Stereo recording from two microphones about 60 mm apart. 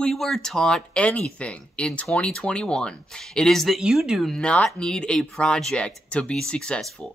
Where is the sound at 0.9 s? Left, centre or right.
Left; by 4.3 s centre.